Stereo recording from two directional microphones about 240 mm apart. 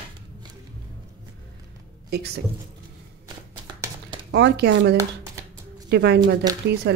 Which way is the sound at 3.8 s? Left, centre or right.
Centre.